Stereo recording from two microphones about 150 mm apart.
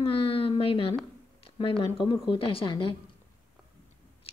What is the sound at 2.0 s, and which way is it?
Speech, 35° left (ahead or behind).